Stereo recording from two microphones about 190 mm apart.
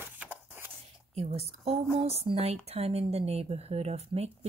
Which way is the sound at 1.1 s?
35° right (ahead or behind).